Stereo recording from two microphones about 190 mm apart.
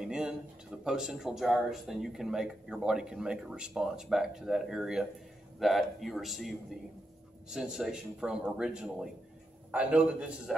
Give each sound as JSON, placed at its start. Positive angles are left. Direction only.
{"t": 0.0, "sound": "a man's voice", "side_deg": -5}